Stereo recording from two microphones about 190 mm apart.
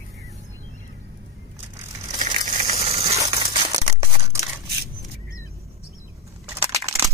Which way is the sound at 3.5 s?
30° right (ahead or behind).